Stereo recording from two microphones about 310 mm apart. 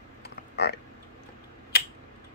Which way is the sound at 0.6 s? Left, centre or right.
Left.